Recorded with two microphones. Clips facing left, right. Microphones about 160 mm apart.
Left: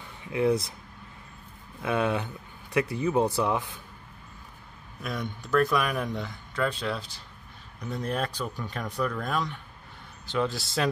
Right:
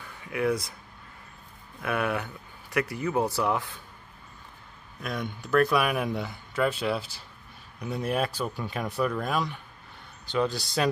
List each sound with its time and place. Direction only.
0.0 s a sound: 25° left (ahead or behind)
1.8 s speech: 20° left (ahead or behind)
5.0 s a man's voice: centre (ahead or behind)